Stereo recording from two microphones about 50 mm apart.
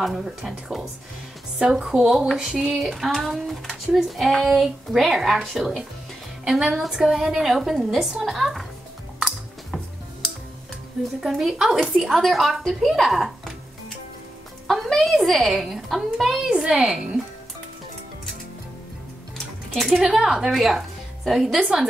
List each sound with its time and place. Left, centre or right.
0.0 s a woman's voice: centre
11.1 s a woman's voice: centre
11.8 s a woman's voice: centre
19.3 s music: centre
20.0 s speech: centre
21.5 s a woman's voice: centre